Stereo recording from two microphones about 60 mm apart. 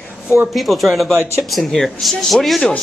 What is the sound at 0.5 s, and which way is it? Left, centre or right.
A man's voice, centre.